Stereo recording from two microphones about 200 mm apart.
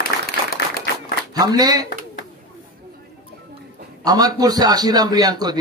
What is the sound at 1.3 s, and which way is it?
Speech, 20° right (ahead or behind).